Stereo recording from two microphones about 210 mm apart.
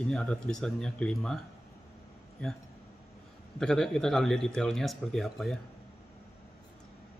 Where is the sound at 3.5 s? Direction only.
5° left (ahead or behind).